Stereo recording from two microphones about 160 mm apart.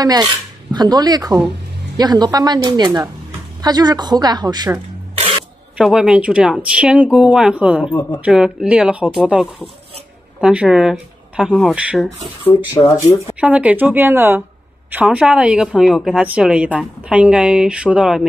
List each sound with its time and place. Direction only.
0.0 s speech: 25° right (ahead or behind)
5.8 s a woman's voice: 5° right (ahead or behind)
12.0 s speech: 15° left (ahead or behind)
13.4 s a woman's voice: 10° right (ahead or behind)